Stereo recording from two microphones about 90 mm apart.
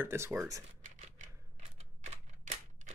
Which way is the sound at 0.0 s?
25° right (ahead or behind).